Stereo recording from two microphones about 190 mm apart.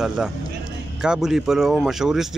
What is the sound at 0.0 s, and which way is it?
Speech, 5° right (ahead or behind).